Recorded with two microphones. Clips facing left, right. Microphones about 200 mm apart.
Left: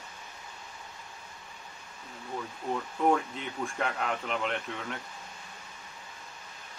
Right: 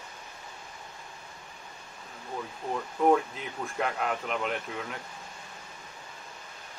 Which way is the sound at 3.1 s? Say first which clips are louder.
Right 3 dB; centre (ahead or behind).